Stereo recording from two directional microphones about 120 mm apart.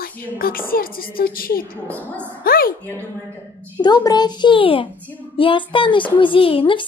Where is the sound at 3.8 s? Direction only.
35° left (ahead or behind).